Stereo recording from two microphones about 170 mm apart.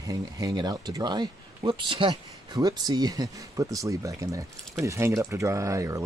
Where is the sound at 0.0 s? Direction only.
20° right (ahead or behind).